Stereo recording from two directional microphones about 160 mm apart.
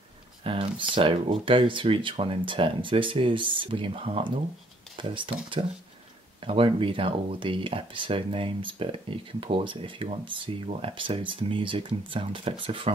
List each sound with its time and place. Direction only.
0.4 s speech: 35° right (ahead or behind)
6.4 s speech: 35° right (ahead or behind)